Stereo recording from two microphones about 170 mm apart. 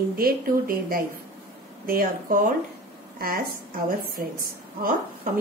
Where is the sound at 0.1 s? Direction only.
60° right (ahead or behind).